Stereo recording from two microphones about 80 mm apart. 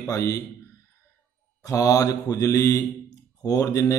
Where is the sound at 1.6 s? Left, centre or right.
Left.